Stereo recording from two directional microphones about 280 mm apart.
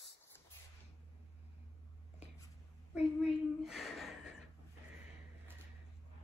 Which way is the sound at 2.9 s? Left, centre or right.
Centre.